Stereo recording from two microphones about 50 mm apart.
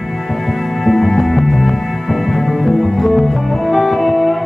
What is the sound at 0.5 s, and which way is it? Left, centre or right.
Music, centre.